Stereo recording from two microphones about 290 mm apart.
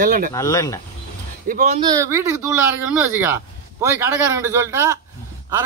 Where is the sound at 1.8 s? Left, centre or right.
Centre.